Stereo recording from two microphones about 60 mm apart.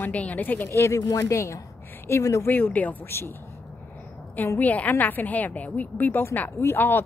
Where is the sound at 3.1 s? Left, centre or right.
Left.